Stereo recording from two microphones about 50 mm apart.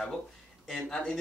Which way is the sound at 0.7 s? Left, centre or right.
Centre.